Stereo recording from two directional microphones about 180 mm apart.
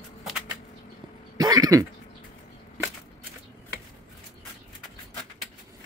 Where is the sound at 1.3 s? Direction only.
20° right (ahead or behind).